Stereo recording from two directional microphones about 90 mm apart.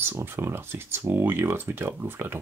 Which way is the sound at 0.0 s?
25° right (ahead or behind).